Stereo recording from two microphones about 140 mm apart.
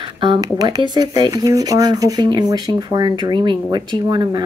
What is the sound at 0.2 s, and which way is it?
Speech, 30° right (ahead or behind).